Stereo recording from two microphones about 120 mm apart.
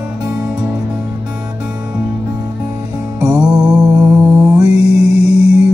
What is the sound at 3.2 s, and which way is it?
Music, 10° right (ahead or behind).